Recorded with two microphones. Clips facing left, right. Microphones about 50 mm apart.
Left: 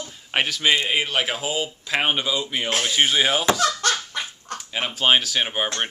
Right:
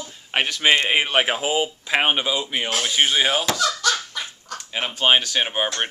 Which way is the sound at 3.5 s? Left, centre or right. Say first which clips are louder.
Left 1 dB; left.